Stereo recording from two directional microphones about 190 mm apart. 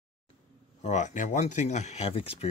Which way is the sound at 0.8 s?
40° left (ahead or behind).